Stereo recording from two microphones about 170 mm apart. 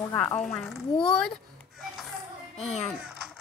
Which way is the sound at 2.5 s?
40° left (ahead or behind).